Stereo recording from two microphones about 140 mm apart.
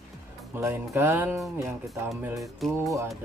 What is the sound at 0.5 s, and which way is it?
Music, 20° right (ahead or behind).